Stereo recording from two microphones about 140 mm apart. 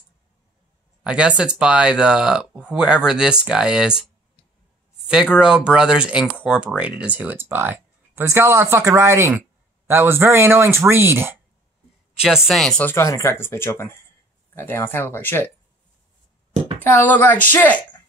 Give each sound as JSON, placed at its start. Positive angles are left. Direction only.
{"t": 1.0, "sound": "speech", "side_deg": -5}
{"t": 12.2, "sound": "speech", "side_deg": -5}
{"t": 16.8, "sound": "speech", "side_deg": 15}